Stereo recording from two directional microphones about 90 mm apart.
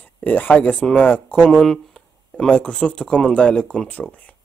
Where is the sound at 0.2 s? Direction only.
20° left (ahead or behind).